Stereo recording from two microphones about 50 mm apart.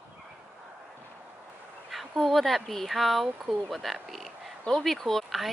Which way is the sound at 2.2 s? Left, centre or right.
Centre.